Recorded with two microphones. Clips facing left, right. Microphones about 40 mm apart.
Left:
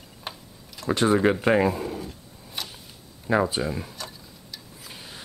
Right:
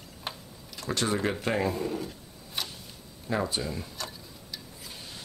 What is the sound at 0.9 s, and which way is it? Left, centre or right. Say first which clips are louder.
Speech: left 8 dB; centre.